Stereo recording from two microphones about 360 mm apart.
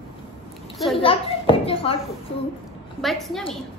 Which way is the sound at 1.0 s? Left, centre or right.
Centre.